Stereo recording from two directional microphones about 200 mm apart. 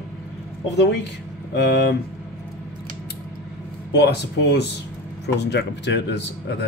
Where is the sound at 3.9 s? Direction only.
55° left (ahead or behind).